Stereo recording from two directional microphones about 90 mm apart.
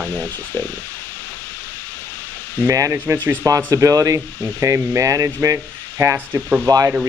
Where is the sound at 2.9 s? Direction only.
25° right (ahead or behind).